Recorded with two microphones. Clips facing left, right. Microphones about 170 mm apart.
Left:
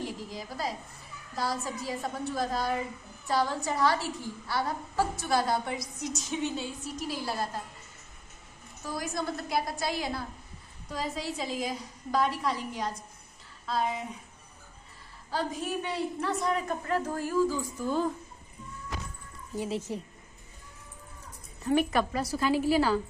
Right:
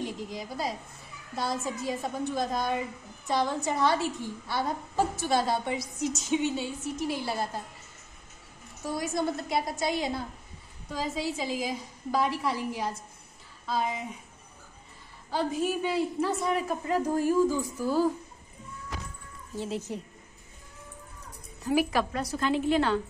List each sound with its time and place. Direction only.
0.3 s a woman's voice: 20° right (ahead or behind)
8.8 s a woman's voice: 25° right (ahead or behind)
10.9 s a woman's voice: centre (ahead or behind)
15.3 s a woman's voice: 5° right (ahead or behind)
16.8 s a woman's voice: 15° right (ahead or behind)
19.9 s a woman's voice: centre (ahead or behind)
21.6 s a woman's voice: centre (ahead or behind)